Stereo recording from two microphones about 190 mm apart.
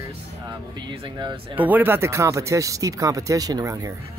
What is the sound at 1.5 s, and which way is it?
Speech, 10° right (ahead or behind).